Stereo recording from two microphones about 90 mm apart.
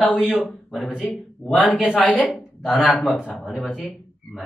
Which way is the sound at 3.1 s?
5° right (ahead or behind).